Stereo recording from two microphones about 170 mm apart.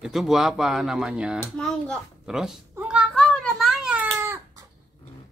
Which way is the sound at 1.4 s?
5° left (ahead or behind).